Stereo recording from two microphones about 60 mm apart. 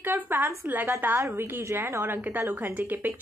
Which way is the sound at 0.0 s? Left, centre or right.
Right.